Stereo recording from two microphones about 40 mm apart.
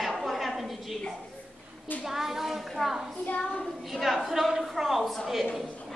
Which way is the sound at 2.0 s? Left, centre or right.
Centre.